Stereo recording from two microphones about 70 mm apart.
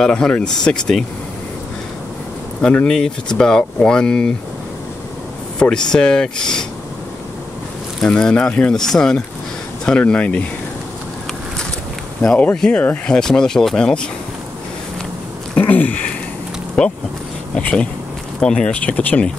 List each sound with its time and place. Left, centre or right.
0.0 s speech: centre
2.6 s speech: centre
5.6 s speech: centre
8.0 s speech: centre
12.2 s speech: centre; by 13.1 s left
13.1 s speech: centre
15.5 s sniff: left
16.8 s speech: left